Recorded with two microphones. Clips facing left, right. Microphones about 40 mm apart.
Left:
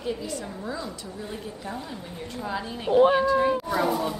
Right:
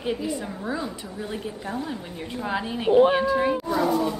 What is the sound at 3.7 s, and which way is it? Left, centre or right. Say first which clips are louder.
Speech: right 2 dB; centre.